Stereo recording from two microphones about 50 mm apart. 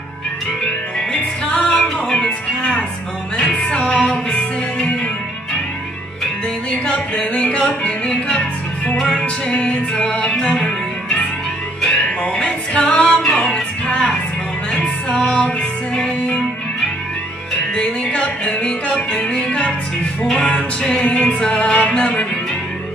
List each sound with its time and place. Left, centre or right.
1.5 s music: left
6.7 s music: centre
17.7 s music: centre